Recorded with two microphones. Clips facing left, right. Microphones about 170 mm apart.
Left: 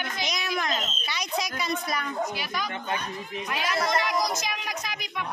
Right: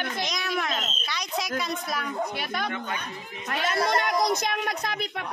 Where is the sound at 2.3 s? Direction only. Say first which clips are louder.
Right 2 dB; 60° right (ahead or behind).